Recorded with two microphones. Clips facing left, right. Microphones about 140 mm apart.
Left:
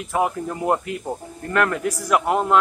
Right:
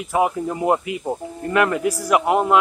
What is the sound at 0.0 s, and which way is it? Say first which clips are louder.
Speech: right 2 dB; 5° right (ahead or behind).